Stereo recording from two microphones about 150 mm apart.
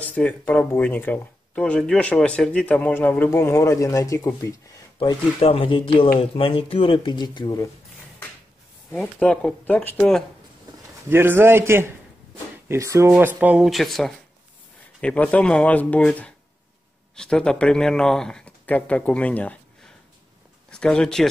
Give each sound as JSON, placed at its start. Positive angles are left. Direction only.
{"t": 0.0, "sound": "speech", "side_deg": 10}
{"t": 4.9, "sound": "speech", "side_deg": 35}
{"t": 8.9, "sound": "speech", "side_deg": 10}
{"t": 11.1, "sound": "a man's voice", "side_deg": -15}